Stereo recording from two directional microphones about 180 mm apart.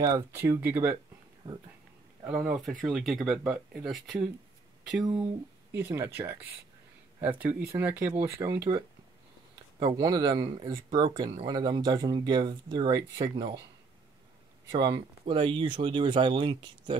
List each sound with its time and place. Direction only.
0.3 s speech: 15° right (ahead or behind)
1.4 s speech: 25° right (ahead or behind)
2.2 s speech: 5° right (ahead or behind)
5.7 s speech: 15° right (ahead or behind)
9.8 s speech: 20° right (ahead or behind)
14.7 s speech: 25° right (ahead or behind)